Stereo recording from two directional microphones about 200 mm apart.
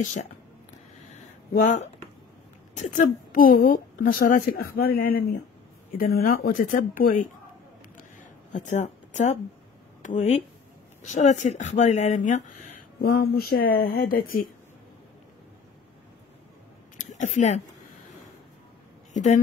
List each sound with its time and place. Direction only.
0.0 s speech: 40° left (ahead or behind)
1.5 s a woman's voice: 40° left (ahead or behind)
8.2 s a sound: 35° left (ahead or behind)
10.0 s speech: 35° left (ahead or behind)
17.0 s speech: 40° left (ahead or behind)
19.1 s a woman's voice: 35° left (ahead or behind)